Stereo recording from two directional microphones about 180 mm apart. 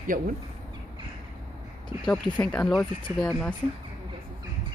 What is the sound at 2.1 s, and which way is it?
Speech, 5° left (ahead or behind).